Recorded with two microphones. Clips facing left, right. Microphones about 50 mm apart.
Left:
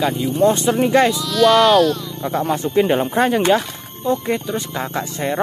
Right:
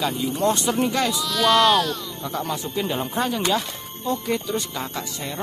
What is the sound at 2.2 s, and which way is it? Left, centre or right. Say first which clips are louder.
Speech: left 8 dB; left.